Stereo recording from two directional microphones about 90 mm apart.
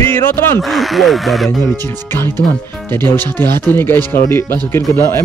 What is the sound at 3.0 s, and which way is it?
Speech, 25° left (ahead or behind).